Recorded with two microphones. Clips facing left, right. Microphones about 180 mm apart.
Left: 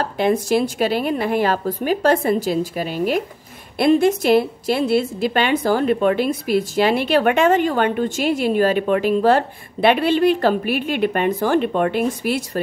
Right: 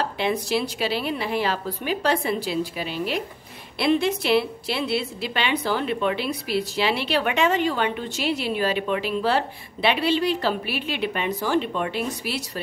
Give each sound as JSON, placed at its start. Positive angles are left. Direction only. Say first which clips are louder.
{"t": 0.0, "sound": "a woman's voice", "louder": "left 6 dB", "side_deg": 45}